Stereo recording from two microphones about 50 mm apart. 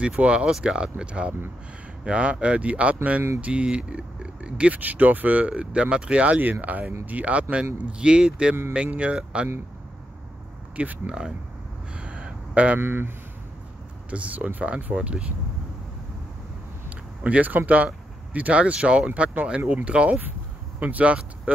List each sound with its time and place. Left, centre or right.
0.0 s speech: right
11.1 s speech: centre
11.9 s a sound: right
12.8 s speech: right
14.1 s speech: right
14.8 s speech: right
15.0 s speech: right
17.2 s speech: right